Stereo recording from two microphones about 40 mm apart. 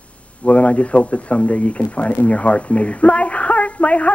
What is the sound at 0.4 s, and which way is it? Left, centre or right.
Speech, left.